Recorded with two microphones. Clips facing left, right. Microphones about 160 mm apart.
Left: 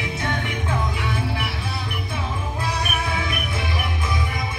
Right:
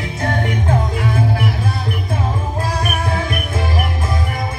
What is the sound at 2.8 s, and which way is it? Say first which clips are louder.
Music: right 5 dB; 45° right (ahead or behind).